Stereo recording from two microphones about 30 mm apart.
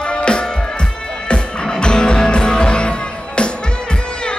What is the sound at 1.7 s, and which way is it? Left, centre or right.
Music, left.